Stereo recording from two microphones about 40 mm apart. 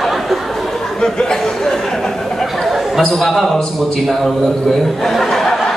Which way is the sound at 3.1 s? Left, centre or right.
Centre.